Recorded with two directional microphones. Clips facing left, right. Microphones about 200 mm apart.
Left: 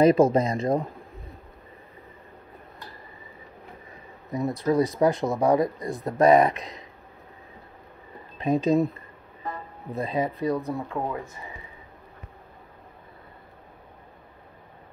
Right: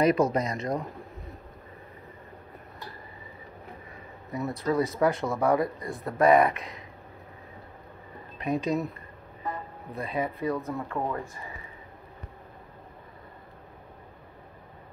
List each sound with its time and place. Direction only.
0.0 s speech: 25° left (ahead or behind)
4.3 s speech: 20° left (ahead or behind)
8.4 s speech: 30° left (ahead or behind)
9.9 s speech: 20° left (ahead or behind)
10.5 s speech: 10° left (ahead or behind)